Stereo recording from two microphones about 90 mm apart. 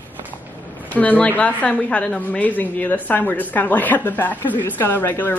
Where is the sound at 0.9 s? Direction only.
20° left (ahead or behind).